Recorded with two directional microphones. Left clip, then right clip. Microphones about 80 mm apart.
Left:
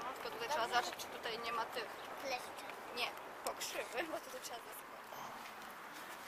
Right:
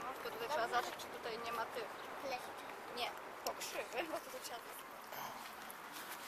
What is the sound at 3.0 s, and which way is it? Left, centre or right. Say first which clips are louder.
Speech: left 1 dB; left.